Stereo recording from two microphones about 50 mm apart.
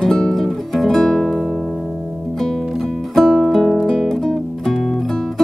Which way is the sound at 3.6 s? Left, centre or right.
Centre.